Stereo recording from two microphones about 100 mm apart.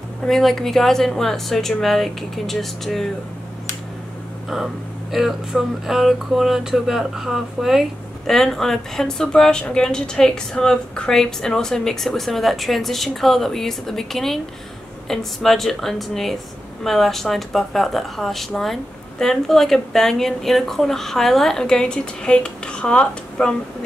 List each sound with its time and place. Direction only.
0.2 s speech: centre (ahead or behind)
5.1 s speech: 5° right (ahead or behind)